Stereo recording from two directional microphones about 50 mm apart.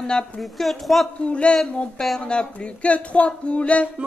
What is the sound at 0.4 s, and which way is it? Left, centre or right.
Speech, centre.